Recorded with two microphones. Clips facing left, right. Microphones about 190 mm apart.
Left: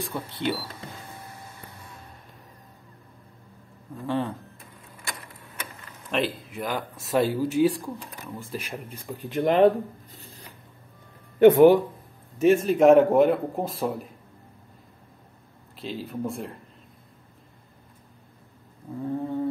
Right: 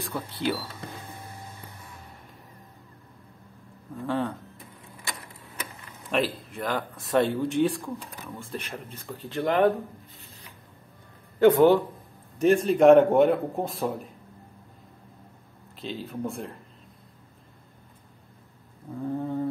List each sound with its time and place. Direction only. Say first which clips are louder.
0.0 s speech: even; centre (ahead or behind)
4.0 s speech: left 1 dB; centre (ahead or behind)
6.0 s speech: even; centre (ahead or behind); by 9.7 s 20° left (ahead or behind)
11.3 s speech: left 3 dB; 20° left (ahead or behind)
12.4 s speech: left 1 dB; 5° left (ahead or behind)
15.8 s speech: left 1 dB; centre (ahead or behind)
18.9 s speech: left 1 dB; centre (ahead or behind)